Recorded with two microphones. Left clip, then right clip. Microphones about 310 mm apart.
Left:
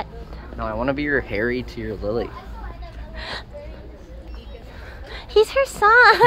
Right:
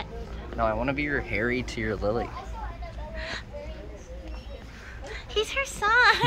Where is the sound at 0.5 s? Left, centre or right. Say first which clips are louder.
Right 2 dB; centre.